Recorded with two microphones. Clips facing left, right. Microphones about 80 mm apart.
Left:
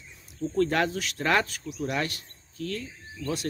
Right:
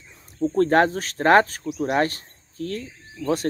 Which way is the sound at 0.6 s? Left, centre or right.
Right.